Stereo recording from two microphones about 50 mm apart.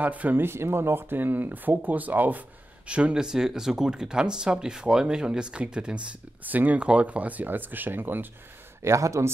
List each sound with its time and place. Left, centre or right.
0.0 s speech: right
0.4 s speech: right
2.9 s speech: right
6.4 s speech: right
6.8 s speech: right
8.8 s speech: right